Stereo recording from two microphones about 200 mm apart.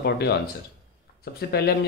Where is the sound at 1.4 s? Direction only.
55° left (ahead or behind).